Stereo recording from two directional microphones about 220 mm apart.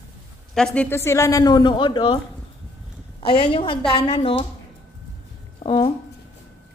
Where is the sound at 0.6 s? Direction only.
5° left (ahead or behind); by 2.1 s 20° left (ahead or behind).